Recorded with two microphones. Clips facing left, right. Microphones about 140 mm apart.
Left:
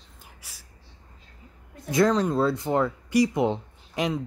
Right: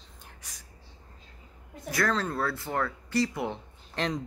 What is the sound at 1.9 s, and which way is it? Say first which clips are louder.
A man's voice: left 7 dB; 20° left (ahead or behind).